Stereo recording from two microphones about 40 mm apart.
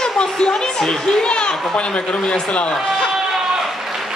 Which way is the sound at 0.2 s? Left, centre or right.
Centre.